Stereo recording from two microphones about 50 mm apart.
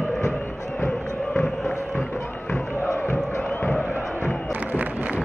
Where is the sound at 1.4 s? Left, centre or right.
Left.